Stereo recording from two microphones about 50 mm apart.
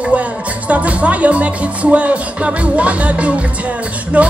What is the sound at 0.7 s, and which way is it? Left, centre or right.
Speech, right.